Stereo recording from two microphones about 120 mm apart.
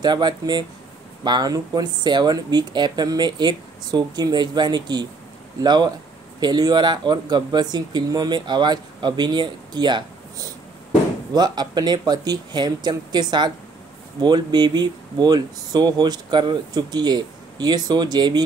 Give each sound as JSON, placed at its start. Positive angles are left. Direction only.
{"t": 0.0, "sound": "speech", "side_deg": -35}